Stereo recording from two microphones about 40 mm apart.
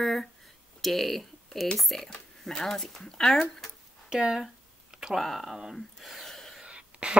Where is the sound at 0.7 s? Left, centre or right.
Centre.